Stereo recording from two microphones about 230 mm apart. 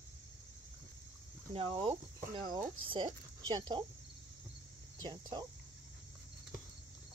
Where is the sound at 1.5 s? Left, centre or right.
Right.